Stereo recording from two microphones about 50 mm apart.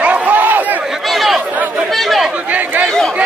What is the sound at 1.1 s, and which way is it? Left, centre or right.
Chatter, centre.